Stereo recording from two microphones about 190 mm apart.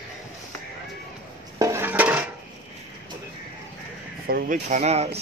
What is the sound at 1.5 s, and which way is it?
Dishes, 15° right (ahead or behind).